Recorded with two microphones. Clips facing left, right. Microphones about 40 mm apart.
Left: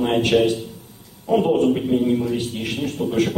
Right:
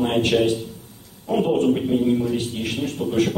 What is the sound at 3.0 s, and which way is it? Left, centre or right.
Music, left.